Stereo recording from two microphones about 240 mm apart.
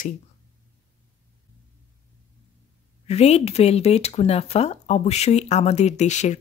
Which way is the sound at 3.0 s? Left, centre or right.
Left.